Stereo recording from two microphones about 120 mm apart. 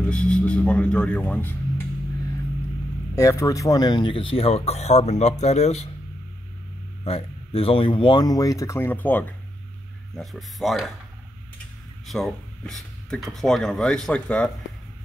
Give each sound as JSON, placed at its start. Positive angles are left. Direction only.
{"t": 0.0, "sound": "speech", "side_deg": 10}
{"t": 3.2, "sound": "speech", "side_deg": 25}
{"t": 7.1, "sound": "speech", "side_deg": 50}
{"t": 10.1, "sound": "speech", "side_deg": 0}
{"t": 12.1, "sound": "speech", "side_deg": 0}